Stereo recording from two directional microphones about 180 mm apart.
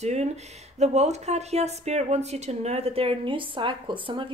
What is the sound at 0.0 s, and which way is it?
A woman's voice, 40° right (ahead or behind).